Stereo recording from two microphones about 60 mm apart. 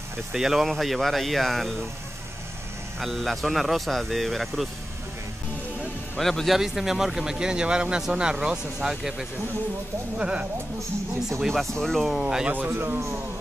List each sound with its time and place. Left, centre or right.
0.3 s speech: centre
3.0 s speech: centre
6.1 s a man's voice: centre
10.1 s a man's voice: centre
11.8 s speech: centre
12.2 s a man's voice: centre
12.5 s a man's voice: right